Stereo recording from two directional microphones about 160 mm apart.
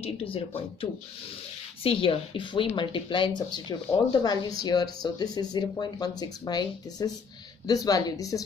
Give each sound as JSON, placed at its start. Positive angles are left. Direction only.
{"t": 0.0, "sound": "speech", "side_deg": 35}